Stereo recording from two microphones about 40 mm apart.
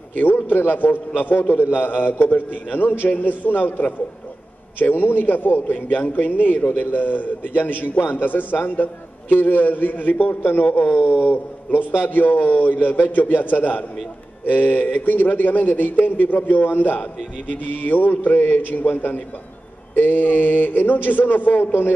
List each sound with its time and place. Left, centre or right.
0.1 s a man's voice: left
4.9 s a man's voice: left